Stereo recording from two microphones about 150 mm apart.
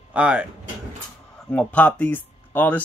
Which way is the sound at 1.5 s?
10° left (ahead or behind).